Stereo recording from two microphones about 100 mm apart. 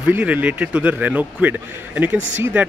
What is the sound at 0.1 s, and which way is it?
A man's voice, 15° right (ahead or behind).